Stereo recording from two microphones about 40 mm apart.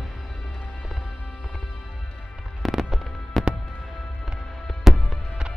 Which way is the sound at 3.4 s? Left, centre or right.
Centre.